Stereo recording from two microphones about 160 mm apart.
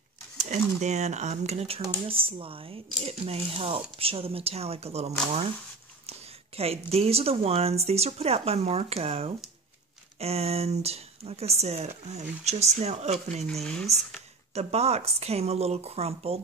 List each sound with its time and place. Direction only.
0.4 s speech: 45° right (ahead or behind)
14.5 s speech: 40° right (ahead or behind)